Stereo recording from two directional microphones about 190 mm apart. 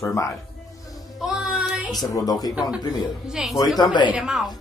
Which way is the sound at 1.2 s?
5° right (ahead or behind).